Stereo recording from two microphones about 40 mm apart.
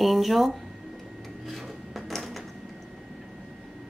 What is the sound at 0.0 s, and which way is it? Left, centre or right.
Speech, centre.